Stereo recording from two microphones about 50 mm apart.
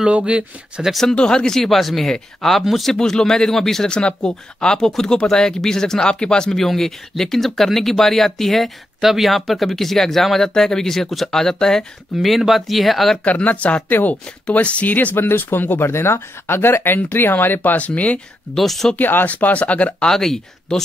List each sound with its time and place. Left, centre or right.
0.0 s speech: right
1.1 s speech: centre
2.9 s speech: centre
3.9 s speech: centre
12.2 s speech: centre
13.2 s speech: left
15.1 s speech: left
15.9 s speech: left
18.5 s speech: centre
18.9 s speech: left
19.3 s speech: left
20.1 s speech: centre